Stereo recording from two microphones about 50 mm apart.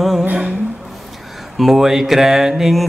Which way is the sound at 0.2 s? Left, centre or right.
Right.